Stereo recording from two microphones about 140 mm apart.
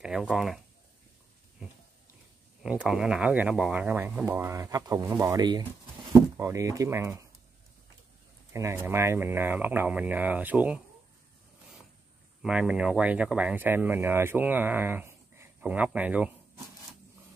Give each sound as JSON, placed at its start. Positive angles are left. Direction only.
{"t": 0.0, "sound": "speech", "side_deg": -5}
{"t": 2.6, "sound": "speech", "side_deg": -5}
{"t": 8.5, "sound": "speech", "side_deg": -20}
{"t": 12.4, "sound": "speech", "side_deg": -5}